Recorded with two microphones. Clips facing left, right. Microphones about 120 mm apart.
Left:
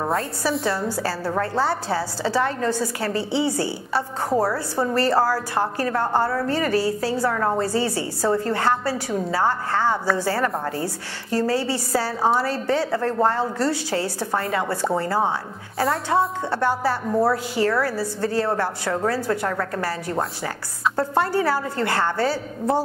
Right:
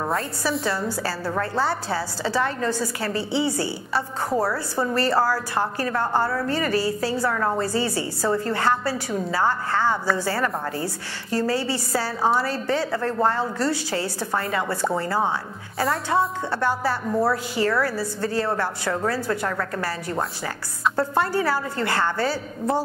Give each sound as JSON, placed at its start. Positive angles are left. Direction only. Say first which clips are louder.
{"t": 0.0, "sound": "a woman's voice", "louder": "left 2 dB", "side_deg": 30}
{"t": 3.9, "sound": "a woman's voice", "louder": "left 2 dB", "side_deg": 30}
{"t": 4.8, "sound": "a woman's voice", "louder": "left 2 dB", "side_deg": 40}